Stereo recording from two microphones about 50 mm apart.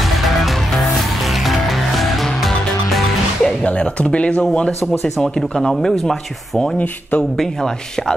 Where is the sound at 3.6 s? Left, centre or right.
Left.